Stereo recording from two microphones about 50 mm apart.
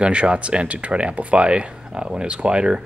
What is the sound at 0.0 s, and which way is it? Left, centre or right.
Speech, right.